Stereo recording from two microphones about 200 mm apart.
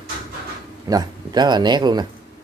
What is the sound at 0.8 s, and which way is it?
A man's voice, 20° right (ahead or behind).